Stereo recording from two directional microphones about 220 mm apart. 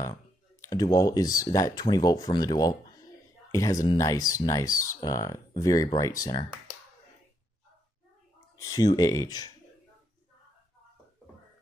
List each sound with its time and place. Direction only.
0.0 s speech: 15° left (ahead or behind)
8.5 s speech: 15° left (ahead or behind)